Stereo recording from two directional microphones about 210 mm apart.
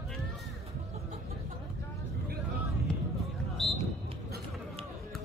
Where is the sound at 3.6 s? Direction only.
Centre (ahead or behind).